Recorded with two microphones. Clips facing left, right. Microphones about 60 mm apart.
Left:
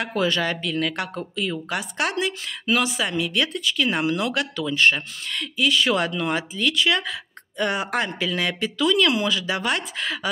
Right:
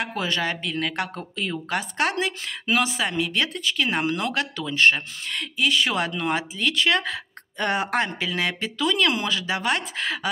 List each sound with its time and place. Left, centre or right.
0.0 s speech: right